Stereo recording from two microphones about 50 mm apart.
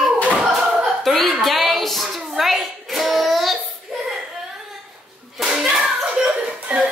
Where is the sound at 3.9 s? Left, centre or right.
Centre.